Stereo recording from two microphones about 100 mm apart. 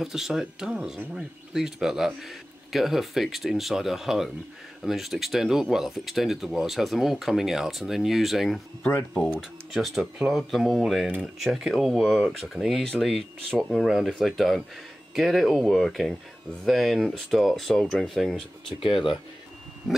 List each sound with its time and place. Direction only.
0.0 s speech: 5° right (ahead or behind)
9.1 s speech: 10° left (ahead or behind)
9.8 s speech: 5° right (ahead or behind)
18.8 s speech: 55° left (ahead or behind)